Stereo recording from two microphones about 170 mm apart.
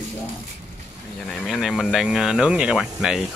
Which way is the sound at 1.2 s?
Centre (ahead or behind).